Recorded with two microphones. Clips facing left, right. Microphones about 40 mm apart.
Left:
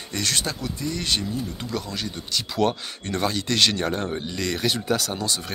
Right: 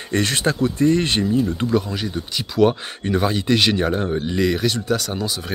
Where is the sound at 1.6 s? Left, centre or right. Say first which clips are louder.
Right 9 dB; right.